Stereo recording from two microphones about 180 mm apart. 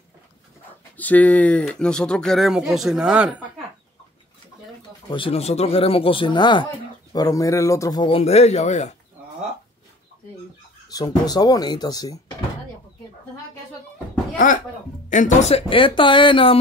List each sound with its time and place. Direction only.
0.9 s speech: 10° left (ahead or behind); by 3.4 s 5° right (ahead or behind)
5.1 s speech: 30° left (ahead or behind)
10.9 s speech: 20° left (ahead or behind)
15.0 s speech: 45° left (ahead or behind); by 16.5 s 30° left (ahead or behind)